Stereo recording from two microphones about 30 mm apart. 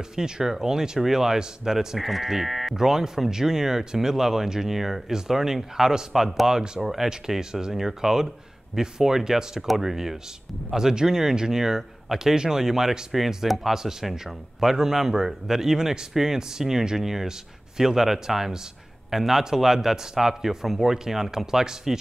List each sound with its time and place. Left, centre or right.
0.1 s speech: centre
2.0 s speech: centre
6.6 s speech: right